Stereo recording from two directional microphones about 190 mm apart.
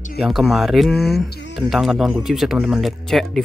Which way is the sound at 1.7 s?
Centre (ahead or behind).